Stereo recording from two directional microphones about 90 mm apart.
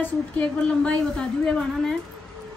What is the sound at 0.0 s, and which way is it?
A woman's voice, 10° left (ahead or behind).